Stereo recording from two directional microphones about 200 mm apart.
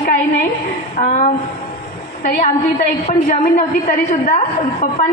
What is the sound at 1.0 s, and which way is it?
Speech, 35° left (ahead or behind).